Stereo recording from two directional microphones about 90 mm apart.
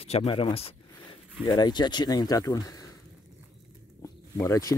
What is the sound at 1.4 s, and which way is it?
Speech, 50° left (ahead or behind).